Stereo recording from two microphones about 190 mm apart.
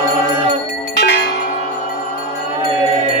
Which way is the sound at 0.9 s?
65° left (ahead or behind).